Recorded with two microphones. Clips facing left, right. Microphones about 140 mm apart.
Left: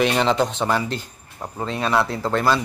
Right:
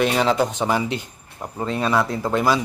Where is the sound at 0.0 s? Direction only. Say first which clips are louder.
Even; 5° right (ahead or behind).